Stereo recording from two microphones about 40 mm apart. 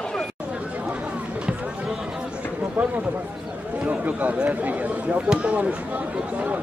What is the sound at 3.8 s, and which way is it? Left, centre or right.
Speech, right.